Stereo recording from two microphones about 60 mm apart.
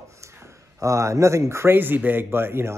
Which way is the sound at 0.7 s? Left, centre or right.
Right.